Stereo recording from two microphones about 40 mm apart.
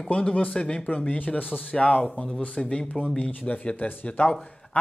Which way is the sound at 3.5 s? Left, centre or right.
Left.